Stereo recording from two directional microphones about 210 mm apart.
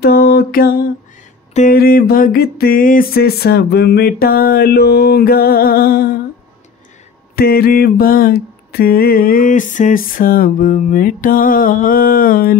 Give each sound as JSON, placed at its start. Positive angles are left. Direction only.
{"t": 0.0, "sound": "mantra", "side_deg": 50}
{"t": 7.3, "sound": "mantra", "side_deg": 45}